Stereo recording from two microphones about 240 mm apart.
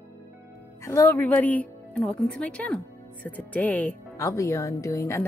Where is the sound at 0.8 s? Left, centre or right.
Centre.